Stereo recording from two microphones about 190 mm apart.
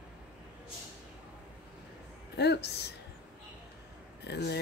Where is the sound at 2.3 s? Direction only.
60° left (ahead or behind).